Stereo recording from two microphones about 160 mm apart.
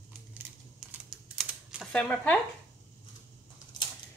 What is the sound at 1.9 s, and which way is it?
Speech, 10° left (ahead or behind).